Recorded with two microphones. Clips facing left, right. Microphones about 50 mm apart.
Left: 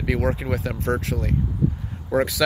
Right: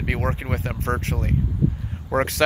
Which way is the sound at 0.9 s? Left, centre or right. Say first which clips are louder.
Left 1 dB; centre.